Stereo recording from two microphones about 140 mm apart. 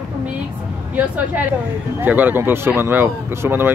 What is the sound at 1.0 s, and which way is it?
Speech, 10° right (ahead or behind).